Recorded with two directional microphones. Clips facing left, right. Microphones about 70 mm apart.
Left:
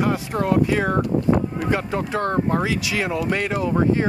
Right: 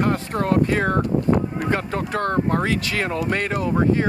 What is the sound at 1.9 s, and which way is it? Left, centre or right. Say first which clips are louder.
Speech: even; left.